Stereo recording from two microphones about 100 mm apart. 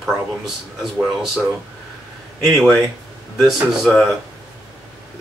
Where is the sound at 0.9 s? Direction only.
5° right (ahead or behind).